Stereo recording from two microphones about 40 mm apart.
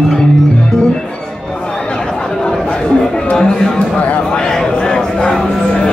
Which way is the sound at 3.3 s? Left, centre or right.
Centre.